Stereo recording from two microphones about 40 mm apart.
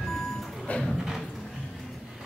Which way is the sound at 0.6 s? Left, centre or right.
Left.